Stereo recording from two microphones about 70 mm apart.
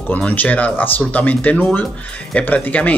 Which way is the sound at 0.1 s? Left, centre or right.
Left.